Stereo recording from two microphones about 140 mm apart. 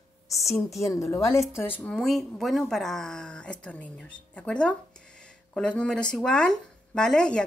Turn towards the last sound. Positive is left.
turn(degrees=5)  # may be behind; listen again after turning